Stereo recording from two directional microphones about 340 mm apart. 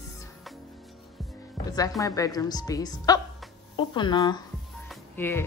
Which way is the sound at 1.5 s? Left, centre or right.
Centre.